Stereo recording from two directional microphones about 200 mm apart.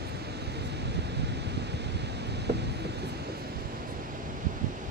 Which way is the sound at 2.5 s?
55° right (ahead or behind).